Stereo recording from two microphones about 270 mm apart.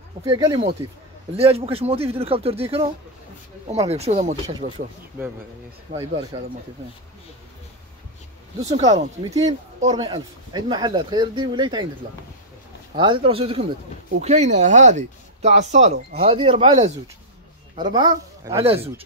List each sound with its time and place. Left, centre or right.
0.2 s speech: centre
5.9 s speech: right
8.5 s speech: right
12.9 s speech: centre